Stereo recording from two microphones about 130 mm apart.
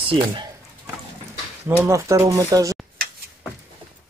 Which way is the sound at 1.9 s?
20° right (ahead or behind).